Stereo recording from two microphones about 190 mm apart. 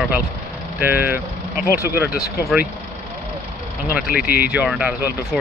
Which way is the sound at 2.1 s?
55° left (ahead or behind).